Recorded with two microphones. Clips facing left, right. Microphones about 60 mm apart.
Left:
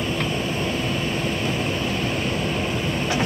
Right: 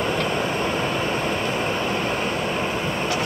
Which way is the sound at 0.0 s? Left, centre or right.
Right.